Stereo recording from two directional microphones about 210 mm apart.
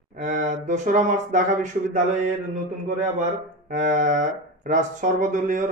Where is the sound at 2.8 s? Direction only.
35° right (ahead or behind).